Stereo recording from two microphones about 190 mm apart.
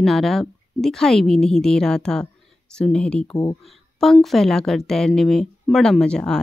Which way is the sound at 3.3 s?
15° left (ahead or behind).